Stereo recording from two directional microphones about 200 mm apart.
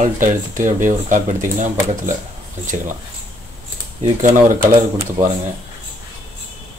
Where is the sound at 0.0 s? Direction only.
40° right (ahead or behind).